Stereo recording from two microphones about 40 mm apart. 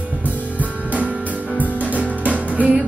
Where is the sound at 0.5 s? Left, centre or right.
Right.